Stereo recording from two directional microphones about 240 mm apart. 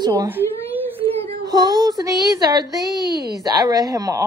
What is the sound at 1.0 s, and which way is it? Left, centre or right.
Speech, centre.